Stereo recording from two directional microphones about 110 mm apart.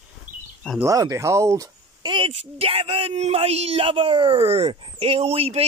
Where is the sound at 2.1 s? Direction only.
50° right (ahead or behind).